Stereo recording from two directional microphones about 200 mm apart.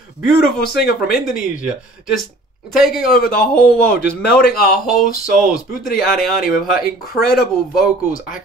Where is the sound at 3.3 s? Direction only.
50° left (ahead or behind).